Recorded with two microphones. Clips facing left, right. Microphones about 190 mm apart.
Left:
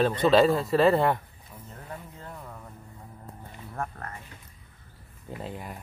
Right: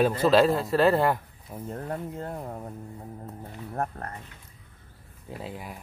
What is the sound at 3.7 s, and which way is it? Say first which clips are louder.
Speech: right 4 dB; 40° right (ahead or behind).